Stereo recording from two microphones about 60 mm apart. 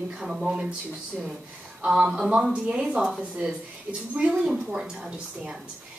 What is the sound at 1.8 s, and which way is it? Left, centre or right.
A woman's voice, centre.